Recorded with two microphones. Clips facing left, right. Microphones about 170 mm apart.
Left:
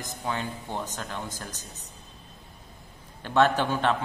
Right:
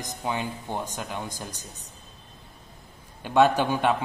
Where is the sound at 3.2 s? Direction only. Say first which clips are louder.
Right 2 dB; 10° right (ahead or behind).